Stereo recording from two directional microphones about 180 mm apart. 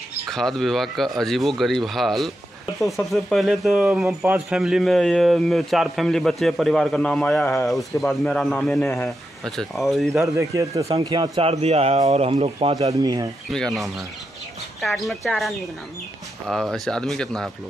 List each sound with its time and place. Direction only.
0.3 s speech: centre (ahead or behind)
10.2 s a man's voice: 15° right (ahead or behind)
10.9 s speech: 30° right (ahead or behind)
12.7 s speech: 20° right (ahead or behind)
13.5 s speech: centre (ahead or behind)
15.0 s speech: centre (ahead or behind)